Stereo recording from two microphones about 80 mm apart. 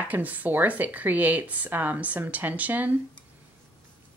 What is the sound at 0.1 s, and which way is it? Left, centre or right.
Speech, right.